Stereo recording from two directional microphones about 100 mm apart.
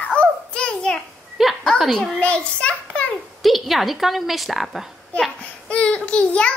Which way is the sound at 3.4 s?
Centre (ahead or behind).